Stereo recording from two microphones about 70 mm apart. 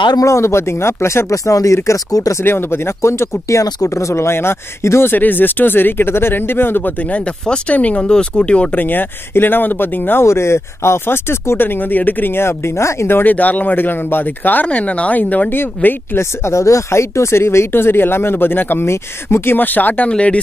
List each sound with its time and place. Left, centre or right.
0.2 s speech: left
2.4 s speech: left
7.4 s speech: centre
16.2 s speech: left
20.1 s speech: centre